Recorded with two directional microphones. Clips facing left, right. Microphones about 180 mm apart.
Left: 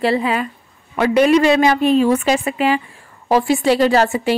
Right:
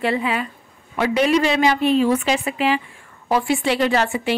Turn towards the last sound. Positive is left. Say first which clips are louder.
# left 5 dB
turn(degrees=40)  # may be behind; listen again after turning